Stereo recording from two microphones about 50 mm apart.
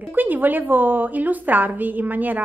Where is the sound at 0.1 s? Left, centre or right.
Right.